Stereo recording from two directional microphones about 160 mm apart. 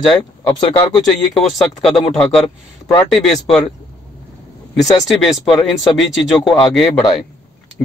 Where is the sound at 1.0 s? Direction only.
Centre (ahead or behind).